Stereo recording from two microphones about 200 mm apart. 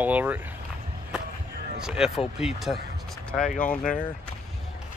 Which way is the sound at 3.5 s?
40° left (ahead or behind).